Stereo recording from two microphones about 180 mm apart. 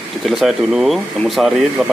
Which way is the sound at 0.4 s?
Centre (ahead or behind).